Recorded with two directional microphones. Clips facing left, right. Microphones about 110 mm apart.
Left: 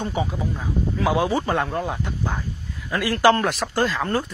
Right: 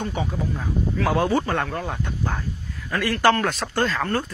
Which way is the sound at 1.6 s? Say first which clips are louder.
Left 2 dB; 20° left (ahead or behind).